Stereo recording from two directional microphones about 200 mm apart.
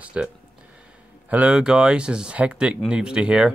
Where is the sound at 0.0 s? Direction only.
5° right (ahead or behind).